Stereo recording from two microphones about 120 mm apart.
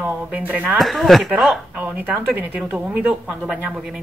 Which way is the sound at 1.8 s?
15° right (ahead or behind).